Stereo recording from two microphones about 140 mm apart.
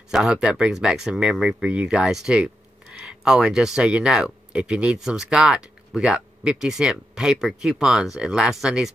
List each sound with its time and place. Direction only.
0.1 s speech: 5° right (ahead or behind)